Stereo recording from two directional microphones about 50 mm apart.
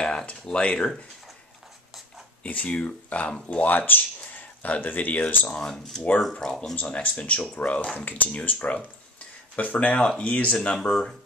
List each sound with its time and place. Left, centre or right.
0.0 s speech: left
2.4 s speech: left
5.5 s speech: centre
6.8 s speech: left
9.9 s speech: left
10.9 s speech: centre